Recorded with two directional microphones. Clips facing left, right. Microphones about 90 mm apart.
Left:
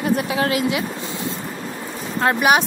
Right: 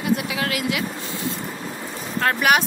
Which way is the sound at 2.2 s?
20° left (ahead or behind).